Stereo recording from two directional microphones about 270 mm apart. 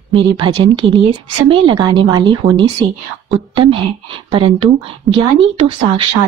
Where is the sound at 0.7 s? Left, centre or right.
Centre.